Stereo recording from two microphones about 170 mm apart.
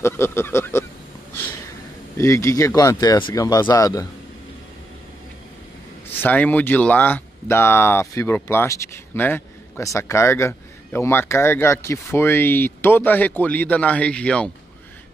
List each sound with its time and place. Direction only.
0.0 s speech: 15° left (ahead or behind)
2.1 s speech: 15° left (ahead or behind)
6.0 s speech: 10° left (ahead or behind)